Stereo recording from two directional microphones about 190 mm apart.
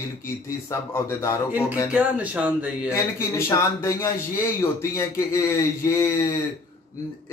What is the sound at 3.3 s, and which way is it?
Speech, 15° left (ahead or behind).